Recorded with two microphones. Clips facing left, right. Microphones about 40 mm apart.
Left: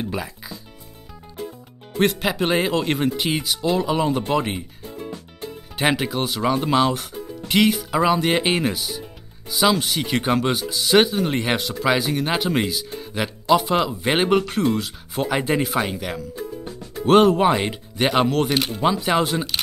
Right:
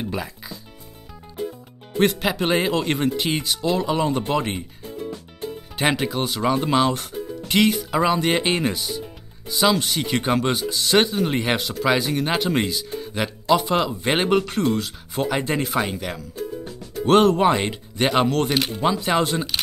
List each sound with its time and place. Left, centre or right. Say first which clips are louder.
0.0 s speech: left 1 dB; centre
2.0 s speech: even; centre
5.8 s speech: left 1 dB; centre
16.3 s music: right 1 dB; left
17.0 s speech: left 1 dB; centre